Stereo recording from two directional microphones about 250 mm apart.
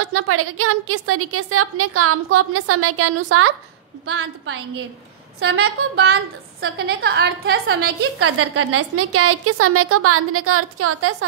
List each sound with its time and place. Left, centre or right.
0.1 s a woman's voice: right
4.0 s a woman's voice: right
6.6 s a woman's voice: right